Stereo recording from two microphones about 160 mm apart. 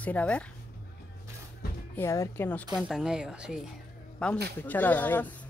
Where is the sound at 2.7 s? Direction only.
5° right (ahead or behind).